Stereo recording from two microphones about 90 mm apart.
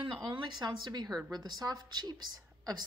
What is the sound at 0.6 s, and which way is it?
A woman's voice, 50° right (ahead or behind).